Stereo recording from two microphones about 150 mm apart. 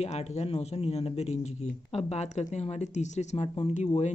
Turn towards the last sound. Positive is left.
turn(degrees=45)  # may be behind; listen again after turning